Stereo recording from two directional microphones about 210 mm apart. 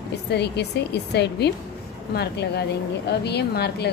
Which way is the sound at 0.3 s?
55° left (ahead or behind).